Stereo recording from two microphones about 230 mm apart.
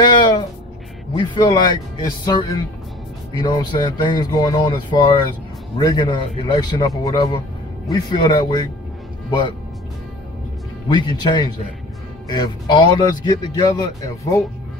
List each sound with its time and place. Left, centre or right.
0.0 s music: centre
1.1 s a man's voice: centre
10.9 s a man's voice: centre